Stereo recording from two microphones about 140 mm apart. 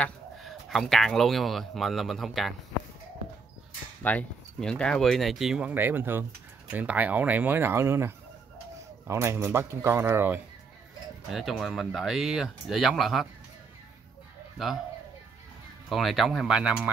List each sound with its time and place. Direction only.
0.0 s speech: centre (ahead or behind)
4.0 s speech: 10° left (ahead or behind); by 10.4 s 15° right (ahead or behind)
11.2 s speech: centre (ahead or behind)
14.6 s speech: centre (ahead or behind)
15.9 s speech: centre (ahead or behind)